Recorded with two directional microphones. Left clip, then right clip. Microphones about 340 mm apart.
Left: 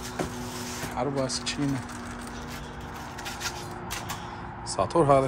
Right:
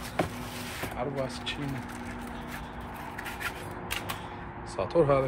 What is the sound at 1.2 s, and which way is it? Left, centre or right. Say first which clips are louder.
Speech: left 4 dB; centre.